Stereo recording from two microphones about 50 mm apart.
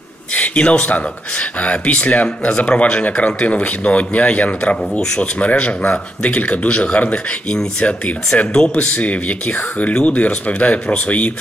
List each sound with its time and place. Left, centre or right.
0.3 s speech: left